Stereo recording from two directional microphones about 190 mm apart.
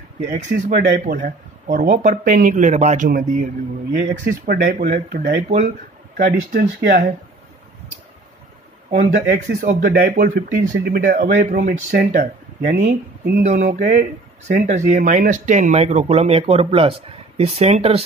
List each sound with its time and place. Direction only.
0.3 s speech: 45° right (ahead or behind)
9.0 s speech: 60° right (ahead or behind)
9.8 s speech: 50° right (ahead or behind)